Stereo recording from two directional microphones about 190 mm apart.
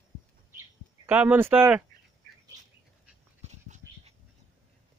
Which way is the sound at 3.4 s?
40° right (ahead or behind).